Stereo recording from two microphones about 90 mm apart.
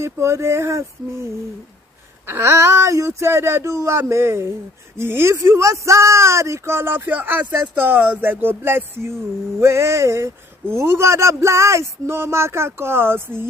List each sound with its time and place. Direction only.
0.0 s speech: 30° right (ahead or behind)